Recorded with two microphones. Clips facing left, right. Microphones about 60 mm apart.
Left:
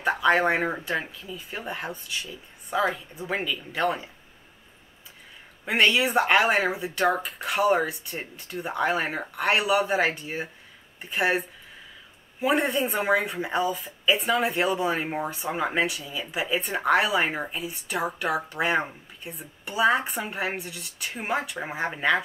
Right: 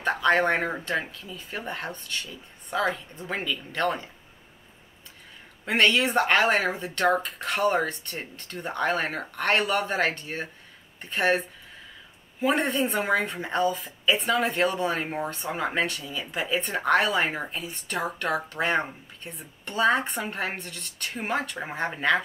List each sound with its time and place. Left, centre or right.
0.0 s speech: centre
5.7 s speech: centre